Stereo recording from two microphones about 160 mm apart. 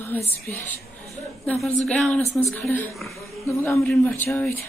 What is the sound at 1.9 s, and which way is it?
Speech, 5° left (ahead or behind).